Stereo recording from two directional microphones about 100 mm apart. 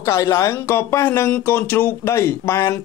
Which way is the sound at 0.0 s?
30° left (ahead or behind).